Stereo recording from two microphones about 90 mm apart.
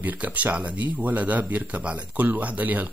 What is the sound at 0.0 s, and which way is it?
Speech, 20° right (ahead or behind).